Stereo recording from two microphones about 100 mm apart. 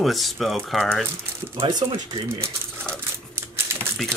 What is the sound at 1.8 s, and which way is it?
Speech, 65° right (ahead or behind).